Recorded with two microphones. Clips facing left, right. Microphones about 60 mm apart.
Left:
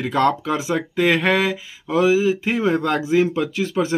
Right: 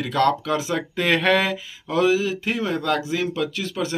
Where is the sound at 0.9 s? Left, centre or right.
Centre.